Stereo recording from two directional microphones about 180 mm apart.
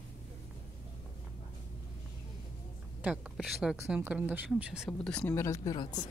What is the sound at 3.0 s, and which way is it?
Speech, centre (ahead or behind).